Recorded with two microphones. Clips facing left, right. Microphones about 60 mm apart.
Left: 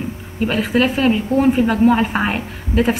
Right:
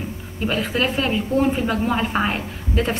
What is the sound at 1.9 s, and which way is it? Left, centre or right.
Speech, centre.